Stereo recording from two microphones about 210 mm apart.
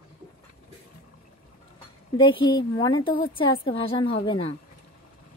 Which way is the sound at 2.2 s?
20° left (ahead or behind).